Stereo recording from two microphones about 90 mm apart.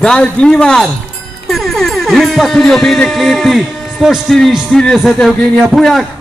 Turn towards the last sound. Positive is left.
turn(degrees=0)  # may be behind; listen again after turning